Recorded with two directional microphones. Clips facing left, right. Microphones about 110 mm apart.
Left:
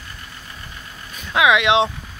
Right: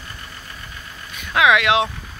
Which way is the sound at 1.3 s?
20° left (ahead or behind).